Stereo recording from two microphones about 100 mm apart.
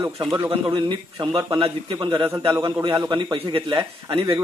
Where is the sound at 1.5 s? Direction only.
55° right (ahead or behind).